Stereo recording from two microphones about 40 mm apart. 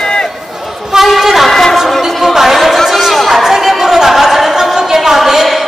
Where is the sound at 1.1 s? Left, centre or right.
Centre.